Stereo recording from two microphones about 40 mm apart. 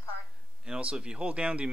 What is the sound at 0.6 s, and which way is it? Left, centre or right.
Speech, right.